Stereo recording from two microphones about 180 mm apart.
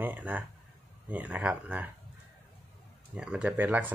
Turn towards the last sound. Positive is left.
turn(degrees=-10)  # may be behind; listen again after turning